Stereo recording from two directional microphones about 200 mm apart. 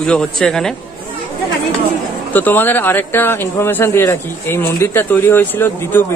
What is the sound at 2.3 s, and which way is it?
Speech, 10° left (ahead or behind).